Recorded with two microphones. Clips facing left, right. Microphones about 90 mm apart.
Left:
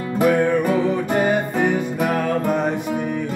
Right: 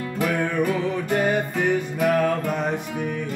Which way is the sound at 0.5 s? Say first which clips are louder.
Left 5 dB; 10° left (ahead or behind).